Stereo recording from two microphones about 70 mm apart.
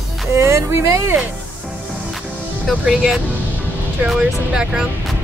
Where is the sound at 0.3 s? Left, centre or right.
Right.